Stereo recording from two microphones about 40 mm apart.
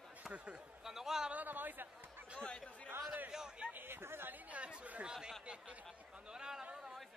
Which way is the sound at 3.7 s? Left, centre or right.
Right.